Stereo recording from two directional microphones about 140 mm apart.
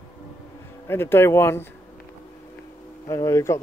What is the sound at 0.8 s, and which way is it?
Speech, 15° left (ahead or behind).